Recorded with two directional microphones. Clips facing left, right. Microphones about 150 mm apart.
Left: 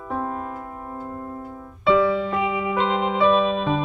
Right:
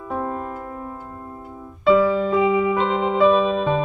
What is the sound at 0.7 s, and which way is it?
Music, 20° left (ahead or behind).